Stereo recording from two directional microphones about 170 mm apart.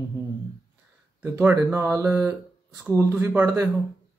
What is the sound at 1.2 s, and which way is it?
Speech, 10° right (ahead or behind).